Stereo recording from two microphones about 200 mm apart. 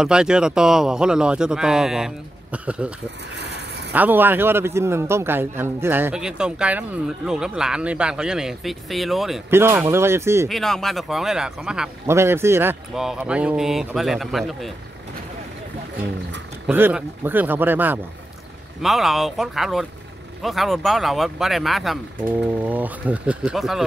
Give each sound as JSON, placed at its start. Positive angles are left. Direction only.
{"t": 0.0, "sound": "speech", "side_deg": -5}
{"t": 3.3, "sound": "vehicle", "side_deg": -55}
{"t": 3.9, "sound": "a man's voice", "side_deg": -10}
{"t": 9.5, "sound": "a man's voice", "side_deg": -10}
{"t": 10.5, "sound": "speech", "side_deg": 0}
{"t": 16.6, "sound": "a man's voice", "side_deg": -10}